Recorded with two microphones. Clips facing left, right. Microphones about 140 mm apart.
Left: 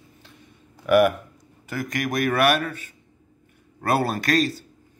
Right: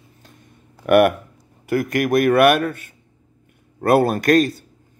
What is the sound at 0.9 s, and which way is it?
A man's voice, 65° right (ahead or behind).